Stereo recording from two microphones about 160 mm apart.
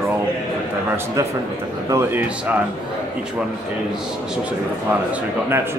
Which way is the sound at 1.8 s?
15° right (ahead or behind).